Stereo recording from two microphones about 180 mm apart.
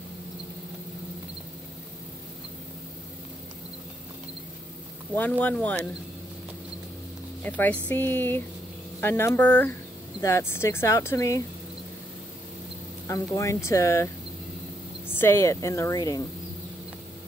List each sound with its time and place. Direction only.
5.4 s speech: 10° left (ahead or behind)
7.4 s speech: 10° left (ahead or behind)
13.0 s speech: 20° left (ahead or behind)